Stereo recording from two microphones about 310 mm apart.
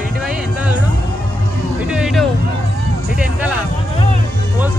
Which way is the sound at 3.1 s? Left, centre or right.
Centre.